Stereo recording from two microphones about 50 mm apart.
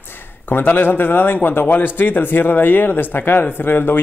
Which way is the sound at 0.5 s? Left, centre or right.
Left.